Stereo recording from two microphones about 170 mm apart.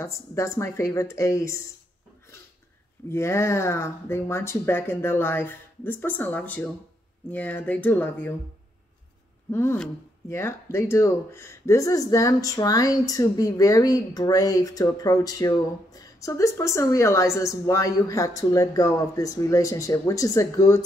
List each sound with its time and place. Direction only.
0.0 s speech: 15° left (ahead or behind)
3.1 s speech: 15° left (ahead or behind)
9.5 s speech: 15° left (ahead or behind)